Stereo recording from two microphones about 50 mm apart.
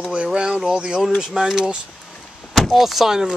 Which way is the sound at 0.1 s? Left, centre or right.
Centre.